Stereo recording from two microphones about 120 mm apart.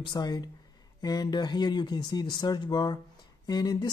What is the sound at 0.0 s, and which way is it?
Speech, 35° left (ahead or behind).